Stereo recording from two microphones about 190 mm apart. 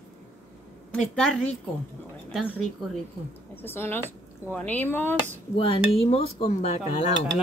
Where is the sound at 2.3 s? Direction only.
Centre (ahead or behind).